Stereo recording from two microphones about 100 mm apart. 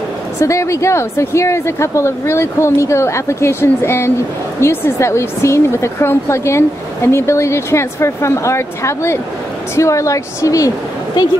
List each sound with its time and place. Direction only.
0.4 s a woman's voice: 30° left (ahead or behind)